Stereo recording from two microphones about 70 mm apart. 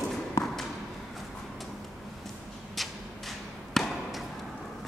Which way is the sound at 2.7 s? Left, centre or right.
Centre.